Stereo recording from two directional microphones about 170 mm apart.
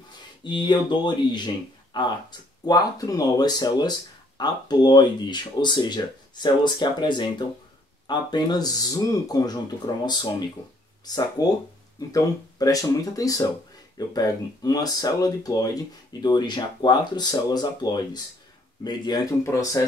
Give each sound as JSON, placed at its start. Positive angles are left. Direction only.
{"t": 0.4, "sound": "speech", "side_deg": 25}
{"t": 11.4, "sound": "speech", "side_deg": 20}